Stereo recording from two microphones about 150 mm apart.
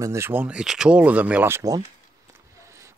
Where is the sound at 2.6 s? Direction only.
20° right (ahead or behind).